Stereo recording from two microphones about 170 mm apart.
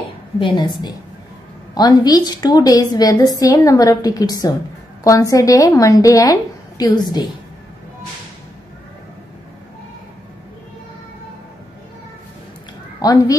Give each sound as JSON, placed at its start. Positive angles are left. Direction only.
{"t": 0.4, "sound": "a woman's voice", "side_deg": 25}
{"t": 13.0, "sound": "a woman's voice", "side_deg": 20}